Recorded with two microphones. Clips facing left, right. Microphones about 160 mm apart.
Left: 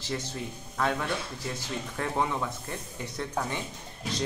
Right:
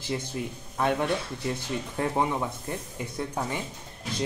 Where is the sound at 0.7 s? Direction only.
20° right (ahead or behind).